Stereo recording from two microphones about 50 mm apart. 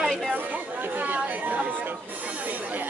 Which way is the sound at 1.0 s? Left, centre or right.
Right.